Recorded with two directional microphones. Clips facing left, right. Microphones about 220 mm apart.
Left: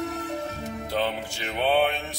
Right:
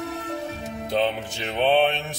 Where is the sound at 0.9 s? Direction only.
20° right (ahead or behind).